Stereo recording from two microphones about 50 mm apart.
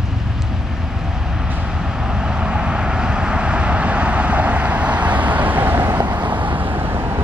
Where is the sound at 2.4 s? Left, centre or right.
Centre; by 6.7 s right.